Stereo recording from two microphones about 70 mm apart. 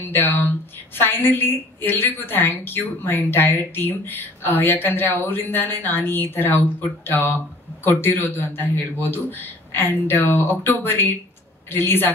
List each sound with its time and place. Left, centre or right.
0.0 s a woman's voice: left